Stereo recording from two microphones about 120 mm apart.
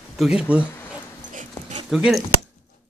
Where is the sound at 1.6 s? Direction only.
20° left (ahead or behind).